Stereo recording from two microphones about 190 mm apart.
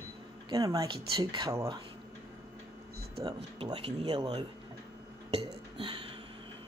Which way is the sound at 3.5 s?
30° right (ahead or behind).